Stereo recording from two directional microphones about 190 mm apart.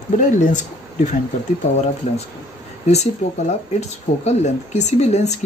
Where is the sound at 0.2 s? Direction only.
40° left (ahead or behind).